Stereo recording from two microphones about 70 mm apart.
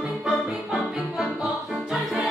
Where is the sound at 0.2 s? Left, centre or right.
Centre.